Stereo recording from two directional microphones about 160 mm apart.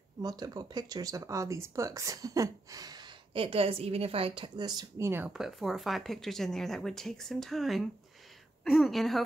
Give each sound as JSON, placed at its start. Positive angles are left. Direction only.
{"t": 0.2, "sound": "speech", "side_deg": -25}
{"t": 5.3, "sound": "speech", "side_deg": 0}